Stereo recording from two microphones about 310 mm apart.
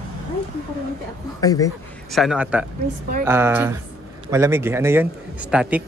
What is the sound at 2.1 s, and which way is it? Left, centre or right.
Speech, centre.